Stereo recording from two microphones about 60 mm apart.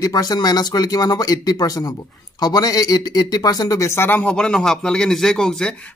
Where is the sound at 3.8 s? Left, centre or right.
Left.